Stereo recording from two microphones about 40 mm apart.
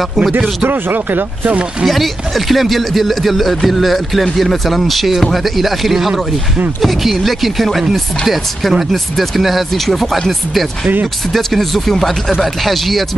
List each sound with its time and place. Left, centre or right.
0.7 s speech: right
1.9 s speech: centre